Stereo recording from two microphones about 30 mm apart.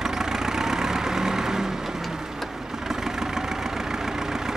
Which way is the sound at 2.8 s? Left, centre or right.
Centre.